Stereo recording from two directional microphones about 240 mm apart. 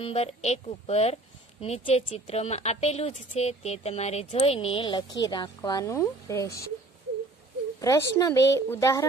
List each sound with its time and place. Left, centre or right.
0.0 s a woman's voice: left
7.8 s a woman's voice: centre